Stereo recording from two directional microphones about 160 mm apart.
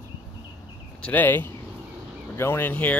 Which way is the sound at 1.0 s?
10° left (ahead or behind).